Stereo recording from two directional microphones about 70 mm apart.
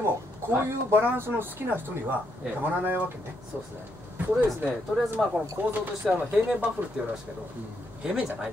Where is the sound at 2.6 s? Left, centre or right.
Right.